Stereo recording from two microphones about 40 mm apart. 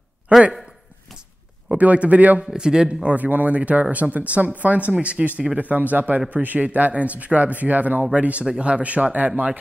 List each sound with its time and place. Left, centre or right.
0.3 s a sound: right
1.8 s speech: right
2.4 s a man's voice: right
3.1 s a man's voice: right
5.6 s speech: right